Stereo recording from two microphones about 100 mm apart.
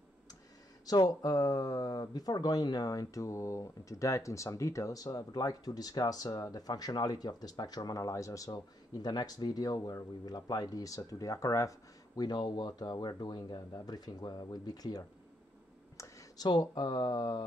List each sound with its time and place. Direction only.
0.8 s speech: 40° left (ahead or behind)
12.2 s speech: 45° left (ahead or behind)
16.0 s a sound: 35° left (ahead or behind)
16.4 s speech: 45° left (ahead or behind)